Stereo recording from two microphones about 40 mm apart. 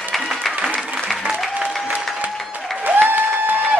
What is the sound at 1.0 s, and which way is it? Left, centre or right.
Applause, centre.